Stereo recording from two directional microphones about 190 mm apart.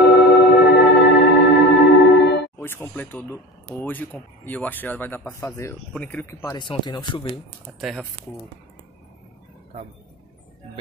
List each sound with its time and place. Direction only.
0.0 s music: 65° left (ahead or behind)
2.6 s speech: 10° left (ahead or behind)
6.4 s speech: 25° left (ahead or behind)